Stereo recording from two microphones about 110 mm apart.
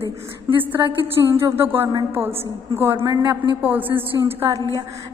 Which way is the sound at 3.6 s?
15° right (ahead or behind).